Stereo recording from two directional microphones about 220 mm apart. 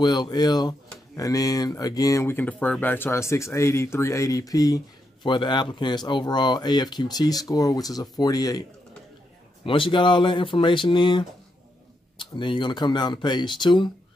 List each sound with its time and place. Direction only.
0.0 s speech: 20° left (ahead or behind)
9.7 s speech: 25° left (ahead or behind)